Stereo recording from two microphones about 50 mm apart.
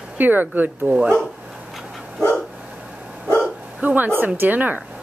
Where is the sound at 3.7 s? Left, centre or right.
Right.